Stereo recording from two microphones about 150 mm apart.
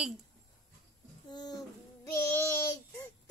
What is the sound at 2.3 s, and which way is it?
Child singing, 15° left (ahead or behind).